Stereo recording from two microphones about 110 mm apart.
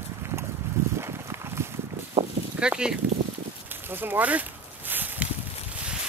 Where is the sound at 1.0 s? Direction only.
25° right (ahead or behind).